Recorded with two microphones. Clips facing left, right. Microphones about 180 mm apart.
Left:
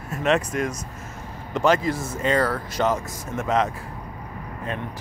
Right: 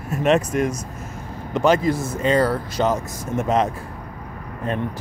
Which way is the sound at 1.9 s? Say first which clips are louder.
Right 4 dB; 35° right (ahead or behind).